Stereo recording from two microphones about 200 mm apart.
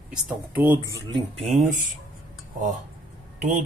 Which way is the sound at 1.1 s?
30° right (ahead or behind).